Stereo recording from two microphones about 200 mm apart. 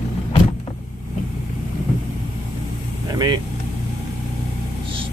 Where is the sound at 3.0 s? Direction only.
20° right (ahead or behind).